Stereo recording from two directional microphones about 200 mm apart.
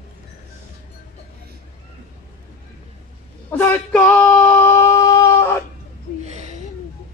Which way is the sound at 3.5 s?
10° left (ahead or behind).